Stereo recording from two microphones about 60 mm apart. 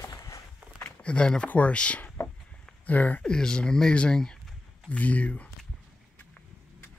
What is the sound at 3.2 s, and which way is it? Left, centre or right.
Speech, centre.